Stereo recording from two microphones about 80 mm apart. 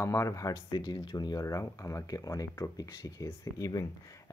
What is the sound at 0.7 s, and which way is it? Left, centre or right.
Speech, left.